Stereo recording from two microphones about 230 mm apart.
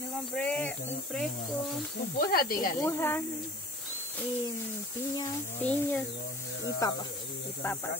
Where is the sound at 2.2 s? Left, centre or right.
Left.